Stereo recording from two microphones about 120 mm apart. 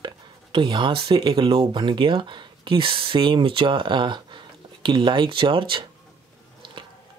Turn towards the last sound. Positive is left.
turn(degrees=-45)  # may be behind; listen again after turning